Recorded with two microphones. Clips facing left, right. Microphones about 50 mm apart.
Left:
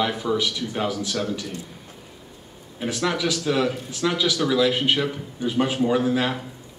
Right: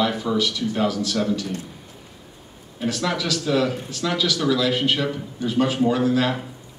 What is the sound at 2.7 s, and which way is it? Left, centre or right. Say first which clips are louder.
Speech: right 1 dB; centre.